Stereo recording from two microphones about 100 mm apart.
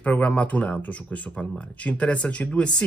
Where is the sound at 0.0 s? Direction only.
15° left (ahead or behind).